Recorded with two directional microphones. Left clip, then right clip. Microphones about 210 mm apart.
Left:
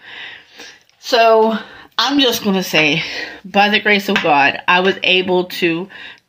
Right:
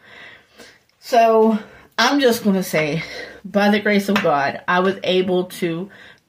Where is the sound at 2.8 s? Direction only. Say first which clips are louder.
Left 11 dB; 50° left (ahead or behind).